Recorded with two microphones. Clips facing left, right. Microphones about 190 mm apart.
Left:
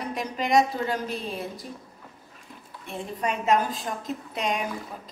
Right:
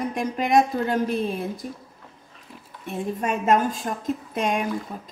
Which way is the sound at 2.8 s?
45° right (ahead or behind).